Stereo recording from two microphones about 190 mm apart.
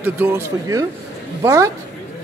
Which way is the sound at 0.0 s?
10° right (ahead or behind).